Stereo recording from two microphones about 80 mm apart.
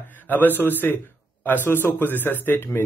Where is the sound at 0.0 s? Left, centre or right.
Left.